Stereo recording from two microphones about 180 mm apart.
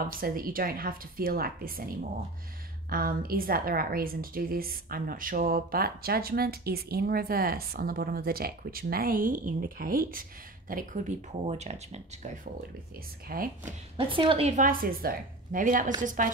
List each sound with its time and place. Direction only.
0.2 s a woman's voice: 55° right (ahead or behind)
13.3 s speech: 50° right (ahead or behind)
13.9 s speech: 30° right (ahead or behind); by 16.3 s 45° right (ahead or behind)